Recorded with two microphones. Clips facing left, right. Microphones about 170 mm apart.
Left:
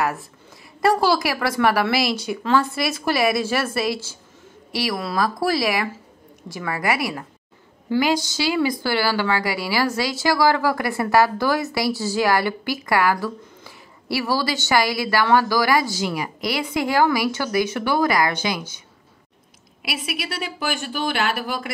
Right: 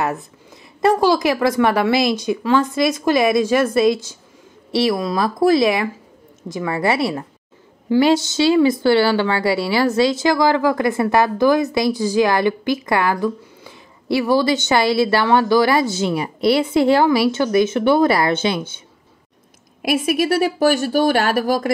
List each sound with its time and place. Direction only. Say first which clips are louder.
0.7 s a woman's voice: right 3 dB; 20° right (ahead or behind)
19.8 s speech: right 12 dB; 45° right (ahead or behind)